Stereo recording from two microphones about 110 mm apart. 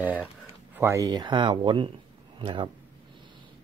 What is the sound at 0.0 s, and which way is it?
Speech, 15° right (ahead or behind).